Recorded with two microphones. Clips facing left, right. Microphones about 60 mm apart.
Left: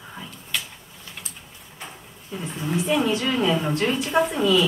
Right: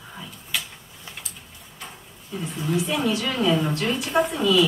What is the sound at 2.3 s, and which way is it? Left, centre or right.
Speech, left.